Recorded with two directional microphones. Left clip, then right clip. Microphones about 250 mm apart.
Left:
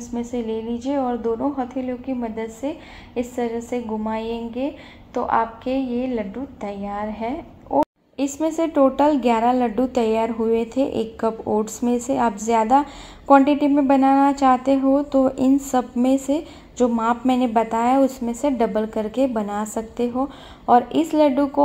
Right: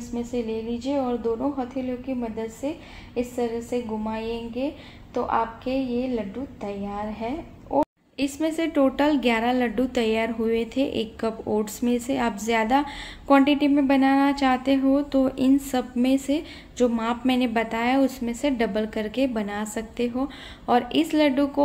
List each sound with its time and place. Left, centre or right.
0.1 s a woman's voice: centre
8.2 s a woman's voice: centre